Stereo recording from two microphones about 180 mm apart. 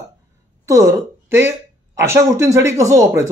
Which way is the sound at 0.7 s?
15° right (ahead or behind).